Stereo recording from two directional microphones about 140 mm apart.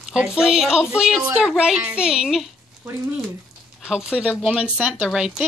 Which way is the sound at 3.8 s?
5° right (ahead or behind).